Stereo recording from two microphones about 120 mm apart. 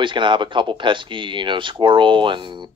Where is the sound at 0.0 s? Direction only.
45° right (ahead or behind).